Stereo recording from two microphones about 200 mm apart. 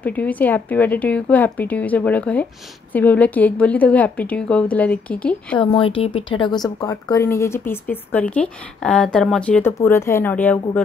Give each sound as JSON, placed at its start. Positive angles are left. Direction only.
{"t": 0.0, "sound": "speech", "side_deg": 5}
{"t": 5.6, "sound": "speech", "side_deg": 25}